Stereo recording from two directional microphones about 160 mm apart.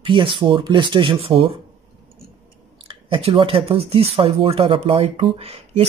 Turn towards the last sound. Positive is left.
turn(degrees=-40)  # may be behind; listen again after turning